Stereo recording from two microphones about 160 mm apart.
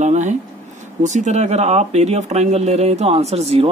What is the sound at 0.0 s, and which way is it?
Speech, 50° right (ahead or behind).